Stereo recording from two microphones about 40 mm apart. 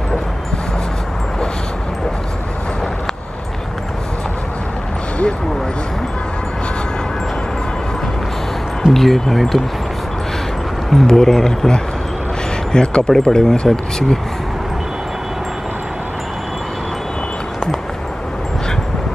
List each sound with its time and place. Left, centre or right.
8.9 s speech: centre
10.9 s speech: centre